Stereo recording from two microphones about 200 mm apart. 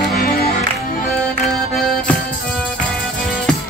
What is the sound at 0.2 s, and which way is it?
Music, 45° left (ahead or behind).